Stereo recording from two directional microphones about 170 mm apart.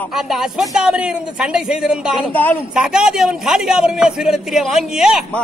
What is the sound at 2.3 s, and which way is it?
Speech, 10° left (ahead or behind).